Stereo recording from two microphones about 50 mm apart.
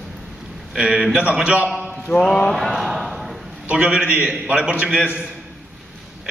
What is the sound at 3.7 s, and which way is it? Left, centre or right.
A man's voice, centre.